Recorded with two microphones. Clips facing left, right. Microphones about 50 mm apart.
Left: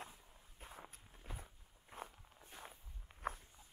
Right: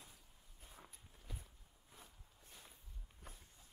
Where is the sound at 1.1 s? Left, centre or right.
Left.